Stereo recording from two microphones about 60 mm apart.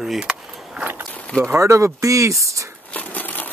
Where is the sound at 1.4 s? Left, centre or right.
Right.